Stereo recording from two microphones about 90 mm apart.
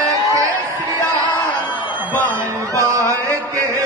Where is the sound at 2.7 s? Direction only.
35° right (ahead or behind).